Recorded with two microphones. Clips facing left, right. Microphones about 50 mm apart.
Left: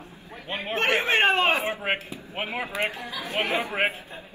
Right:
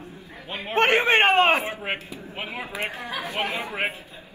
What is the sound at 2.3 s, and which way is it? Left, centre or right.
Speech, left.